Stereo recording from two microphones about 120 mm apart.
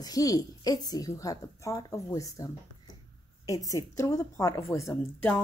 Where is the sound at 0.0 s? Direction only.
30° left (ahead or behind).